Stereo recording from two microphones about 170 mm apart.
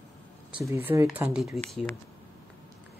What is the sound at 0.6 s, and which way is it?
Speech, 15° right (ahead or behind).